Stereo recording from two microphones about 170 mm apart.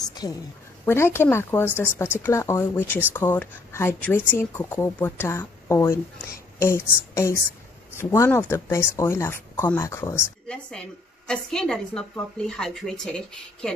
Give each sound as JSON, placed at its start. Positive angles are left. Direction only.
{"t": 0.2, "sound": "a woman's voice", "side_deg": 20}
{"t": 10.5, "sound": "a woman's voice", "side_deg": 5}